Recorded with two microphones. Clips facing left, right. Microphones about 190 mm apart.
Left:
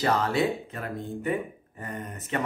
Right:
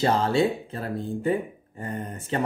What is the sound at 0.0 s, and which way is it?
Speech, 30° right (ahead or behind).